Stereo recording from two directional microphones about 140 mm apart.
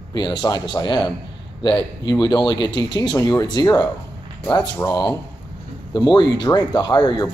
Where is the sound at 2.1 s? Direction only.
30° left (ahead or behind).